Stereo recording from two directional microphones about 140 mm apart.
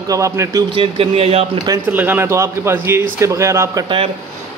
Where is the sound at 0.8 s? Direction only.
45° right (ahead or behind).